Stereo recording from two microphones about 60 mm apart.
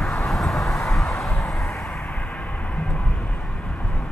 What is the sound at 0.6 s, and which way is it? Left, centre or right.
Vehicle, left.